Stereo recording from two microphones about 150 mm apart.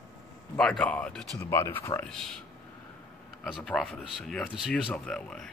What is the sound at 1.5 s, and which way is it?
Speech, 15° left (ahead or behind).